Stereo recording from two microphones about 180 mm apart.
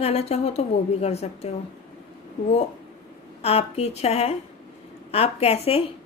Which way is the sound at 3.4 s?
35° left (ahead or behind).